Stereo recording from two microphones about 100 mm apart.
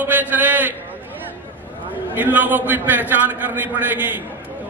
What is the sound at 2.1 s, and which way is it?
A man's voice, 15° right (ahead or behind).